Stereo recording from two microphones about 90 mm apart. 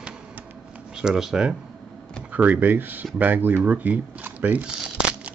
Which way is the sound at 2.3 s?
15° right (ahead or behind).